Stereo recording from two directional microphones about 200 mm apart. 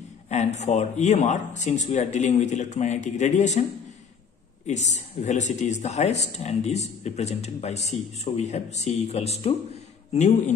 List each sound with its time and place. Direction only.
0.3 s speech: 35° left (ahead or behind)
4.6 s speech: 35° left (ahead or behind)